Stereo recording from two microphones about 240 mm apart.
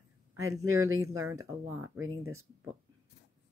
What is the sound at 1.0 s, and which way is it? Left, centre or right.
Speech, centre.